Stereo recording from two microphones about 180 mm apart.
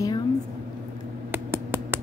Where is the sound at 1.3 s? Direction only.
15° right (ahead or behind).